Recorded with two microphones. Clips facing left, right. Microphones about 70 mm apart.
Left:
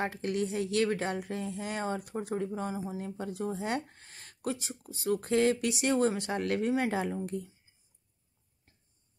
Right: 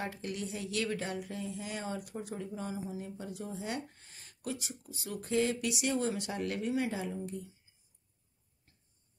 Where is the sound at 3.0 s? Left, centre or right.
Left.